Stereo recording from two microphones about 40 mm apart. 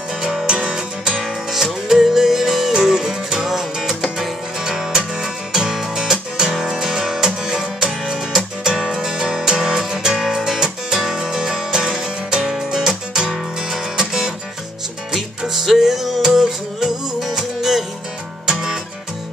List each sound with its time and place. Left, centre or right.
0.5 s music: centre
4.9 s music: centre
15.4 s music: centre